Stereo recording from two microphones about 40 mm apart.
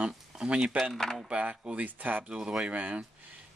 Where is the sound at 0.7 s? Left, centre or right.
Right.